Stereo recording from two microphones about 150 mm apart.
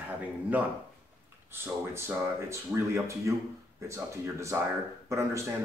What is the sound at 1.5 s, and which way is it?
Speech, 15° right (ahead or behind).